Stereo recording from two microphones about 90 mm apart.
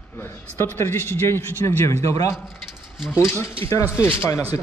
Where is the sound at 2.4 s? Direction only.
5° right (ahead or behind).